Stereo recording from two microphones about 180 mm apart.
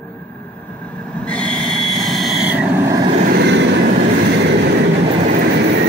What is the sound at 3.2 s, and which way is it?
Vehicle, 60° right (ahead or behind).